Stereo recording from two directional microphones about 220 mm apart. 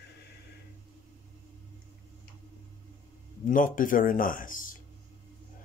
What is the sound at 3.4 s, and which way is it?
Speech, 35° left (ahead or behind).